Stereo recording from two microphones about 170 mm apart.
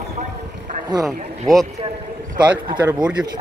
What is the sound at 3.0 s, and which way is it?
Speech, 5° right (ahead or behind).